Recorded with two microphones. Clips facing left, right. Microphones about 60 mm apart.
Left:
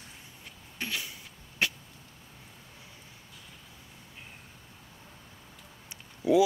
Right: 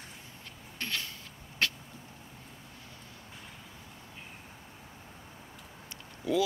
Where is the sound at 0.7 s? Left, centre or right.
Centre.